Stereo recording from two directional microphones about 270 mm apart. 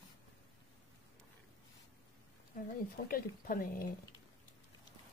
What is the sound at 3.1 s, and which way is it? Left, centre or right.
Speech, left.